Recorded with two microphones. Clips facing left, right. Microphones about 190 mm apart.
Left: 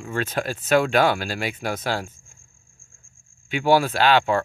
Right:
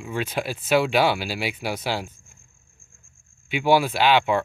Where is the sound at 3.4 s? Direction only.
10° right (ahead or behind).